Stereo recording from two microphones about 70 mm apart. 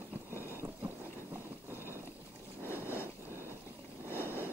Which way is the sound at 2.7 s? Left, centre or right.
Left.